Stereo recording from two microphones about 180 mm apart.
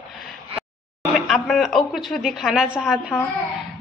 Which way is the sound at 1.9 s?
Centre (ahead or behind).